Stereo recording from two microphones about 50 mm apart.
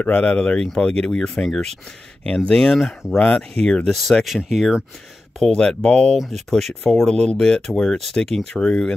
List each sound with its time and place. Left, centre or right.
0.0 s speech: left; by 1.7 s centre
2.2 s speech: left
2.7 s speech: centre
3.3 s speech: centre
3.9 s speech: centre
5.4 s speech: centre
6.5 s speech: centre
8.5 s speech: centre